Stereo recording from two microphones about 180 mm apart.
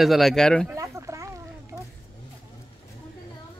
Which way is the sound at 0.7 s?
15° right (ahead or behind).